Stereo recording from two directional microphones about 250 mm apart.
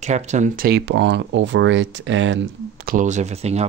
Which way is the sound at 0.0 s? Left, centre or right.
Right.